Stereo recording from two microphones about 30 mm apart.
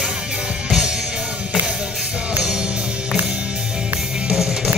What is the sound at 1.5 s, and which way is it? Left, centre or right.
Music, right.